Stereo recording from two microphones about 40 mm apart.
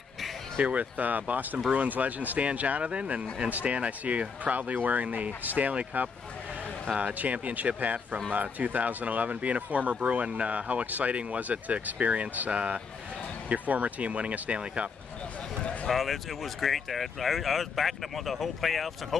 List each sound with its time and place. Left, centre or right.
0.7 s speech: right
15.6 s a sound: left
15.9 s speech: centre